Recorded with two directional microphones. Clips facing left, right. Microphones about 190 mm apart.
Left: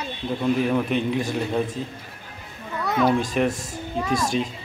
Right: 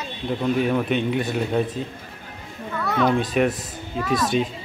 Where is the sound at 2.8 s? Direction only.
15° left (ahead or behind).